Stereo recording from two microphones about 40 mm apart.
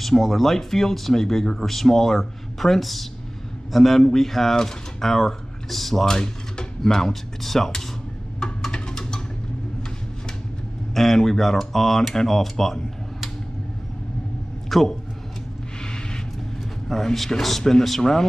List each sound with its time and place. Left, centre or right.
0.0 s speech: centre
8.4 s music: centre
11.0 s speech: centre
14.7 s a man's voice: centre
15.8 s a sound: centre
17.0 s speech: centre